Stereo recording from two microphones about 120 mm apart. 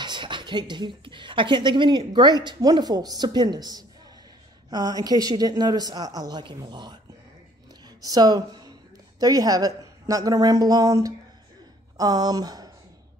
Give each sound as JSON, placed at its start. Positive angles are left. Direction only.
{"t": 0.0, "sound": "speech", "side_deg": -40}
{"t": 7.8, "sound": "a sound", "side_deg": -35}
{"t": 9.2, "sound": "speech", "side_deg": -30}